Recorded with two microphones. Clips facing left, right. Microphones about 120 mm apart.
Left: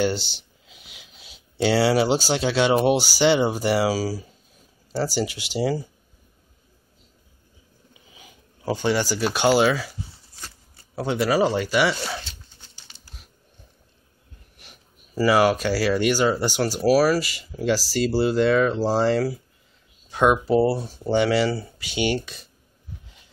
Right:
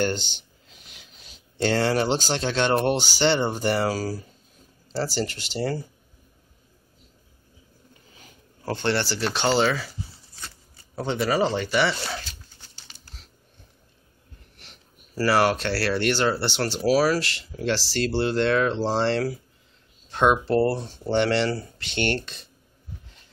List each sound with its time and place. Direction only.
0.0 s speech: 5° left (ahead or behind)
0.4 s a sound: 5° left (ahead or behind)
1.6 s speech: 5° left (ahead or behind)
7.9 s speech: 5° left (ahead or behind)
11.0 s speech: 5° left (ahead or behind)
12.2 s a sound: 20° left (ahead or behind)
13.0 s typing: 10° left (ahead or behind)
14.6 s speech: 10° left (ahead or behind)